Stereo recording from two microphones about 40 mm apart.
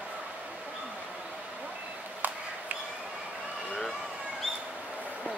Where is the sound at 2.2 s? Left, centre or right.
Right.